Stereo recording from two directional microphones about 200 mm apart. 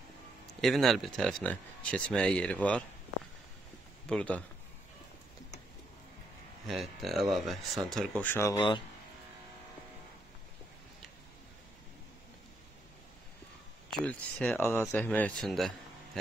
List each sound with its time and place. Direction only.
0.5 s speech: centre (ahead or behind)
4.1 s speech: 5° left (ahead or behind)
6.7 s speech: centre (ahead or behind)
8.5 s speech: 25° left (ahead or behind)
13.9 s speech: 5° left (ahead or behind)